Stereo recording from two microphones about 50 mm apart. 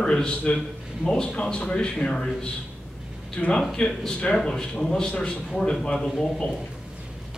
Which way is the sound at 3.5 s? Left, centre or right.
Centre.